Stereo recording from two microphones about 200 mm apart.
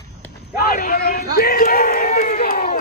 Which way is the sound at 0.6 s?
50° left (ahead or behind).